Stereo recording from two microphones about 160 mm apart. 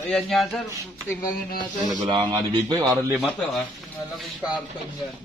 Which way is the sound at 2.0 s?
30° right (ahead or behind).